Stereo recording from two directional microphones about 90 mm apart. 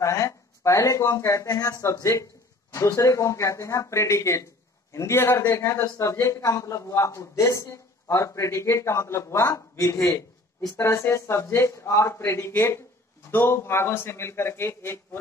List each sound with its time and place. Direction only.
0.0 s a man's voice: 35° left (ahead or behind)